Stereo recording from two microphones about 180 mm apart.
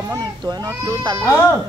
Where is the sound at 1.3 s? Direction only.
15° left (ahead or behind).